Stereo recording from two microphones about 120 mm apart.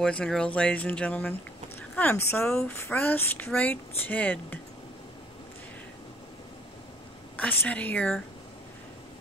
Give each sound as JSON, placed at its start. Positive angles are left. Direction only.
{"t": 0.0, "sound": "speech", "side_deg": 5}
{"t": 2.4, "sound": "speech", "side_deg": 5}
{"t": 2.8, "sound": "speech", "side_deg": 15}
{"t": 7.3, "sound": "speech", "side_deg": 10}